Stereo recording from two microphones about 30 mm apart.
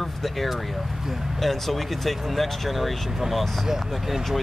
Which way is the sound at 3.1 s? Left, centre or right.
Centre.